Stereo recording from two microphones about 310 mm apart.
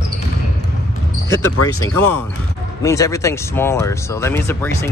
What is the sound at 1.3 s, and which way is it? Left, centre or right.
Speech, left.